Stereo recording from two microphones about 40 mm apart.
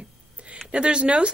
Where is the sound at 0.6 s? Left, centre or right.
Right.